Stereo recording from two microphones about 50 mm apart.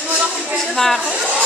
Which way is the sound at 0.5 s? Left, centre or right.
Centre.